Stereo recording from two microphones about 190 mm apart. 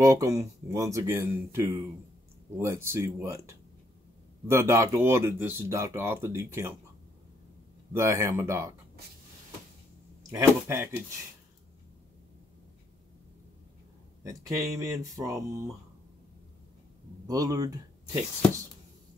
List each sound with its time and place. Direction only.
0.0 s speech: 15° right (ahead or behind)
7.9 s speech: 15° right (ahead or behind)
10.3 s speech: 15° right (ahead or behind)
14.2 s speech: 15° right (ahead or behind)
17.3 s speech: 20° right (ahead or behind)